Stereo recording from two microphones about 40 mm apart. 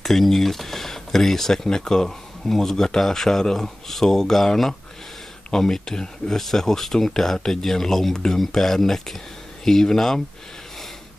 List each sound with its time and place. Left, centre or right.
0.0 s speech: centre
5.5 s speech: centre